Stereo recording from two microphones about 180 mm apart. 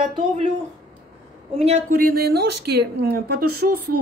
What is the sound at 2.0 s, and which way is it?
A woman's voice, 55° right (ahead or behind).